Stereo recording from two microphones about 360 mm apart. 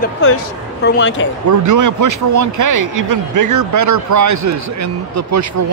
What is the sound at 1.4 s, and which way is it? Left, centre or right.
Speech, right.